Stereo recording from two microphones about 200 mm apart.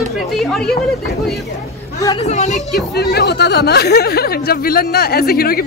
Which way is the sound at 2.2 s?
35° left (ahead or behind).